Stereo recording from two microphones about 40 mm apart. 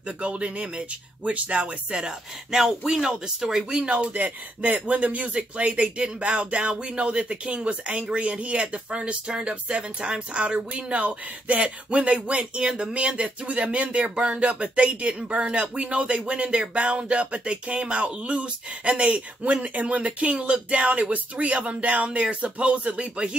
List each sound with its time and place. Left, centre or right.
0.2 s speech: right
4.1 s speech: right